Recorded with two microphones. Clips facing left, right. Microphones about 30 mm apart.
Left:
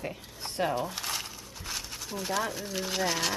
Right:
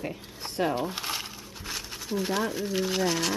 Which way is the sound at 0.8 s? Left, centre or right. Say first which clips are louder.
Right 2 dB; right.